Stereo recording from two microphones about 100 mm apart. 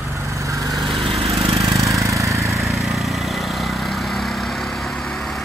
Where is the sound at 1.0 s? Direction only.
80° right.